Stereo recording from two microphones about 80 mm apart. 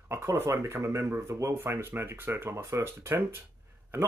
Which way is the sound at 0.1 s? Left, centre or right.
Right.